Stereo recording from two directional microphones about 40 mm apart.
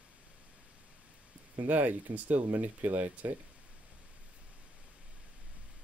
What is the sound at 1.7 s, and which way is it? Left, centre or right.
Speech, right.